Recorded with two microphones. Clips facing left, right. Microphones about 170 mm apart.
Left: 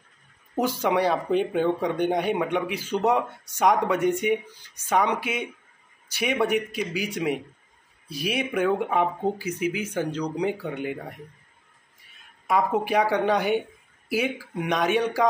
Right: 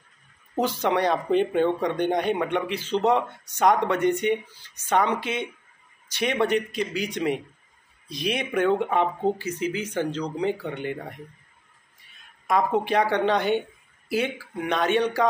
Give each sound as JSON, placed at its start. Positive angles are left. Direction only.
{"t": 0.6, "sound": "speech", "side_deg": 10}
{"t": 12.4, "sound": "speech", "side_deg": 10}